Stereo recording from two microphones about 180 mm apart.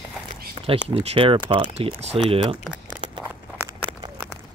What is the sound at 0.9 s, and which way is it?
Speech, 35° right (ahead or behind).